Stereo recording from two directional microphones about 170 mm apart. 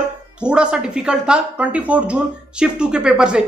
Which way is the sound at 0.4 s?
5° right (ahead or behind).